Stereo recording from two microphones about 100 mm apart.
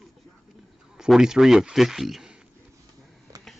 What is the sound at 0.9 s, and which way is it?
Speech, 5° right (ahead or behind).